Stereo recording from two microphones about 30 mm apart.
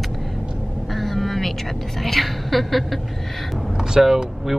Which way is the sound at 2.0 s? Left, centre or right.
Centre.